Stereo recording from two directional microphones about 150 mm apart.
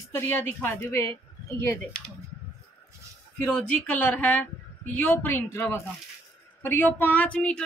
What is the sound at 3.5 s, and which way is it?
Speech, 10° left (ahead or behind).